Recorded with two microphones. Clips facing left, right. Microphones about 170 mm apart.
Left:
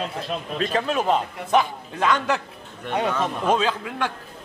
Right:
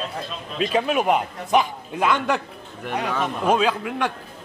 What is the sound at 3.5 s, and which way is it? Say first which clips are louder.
Speech: right 3 dB; 15° right (ahead or behind).